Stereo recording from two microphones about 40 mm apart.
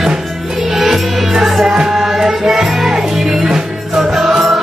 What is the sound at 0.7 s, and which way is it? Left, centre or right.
Music, centre.